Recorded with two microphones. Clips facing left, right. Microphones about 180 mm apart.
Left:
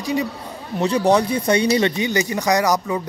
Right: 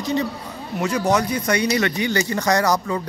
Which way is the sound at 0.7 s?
30° left (ahead or behind).